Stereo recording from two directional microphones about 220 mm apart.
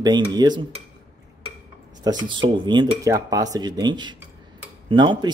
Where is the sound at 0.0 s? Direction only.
20° right (ahead or behind).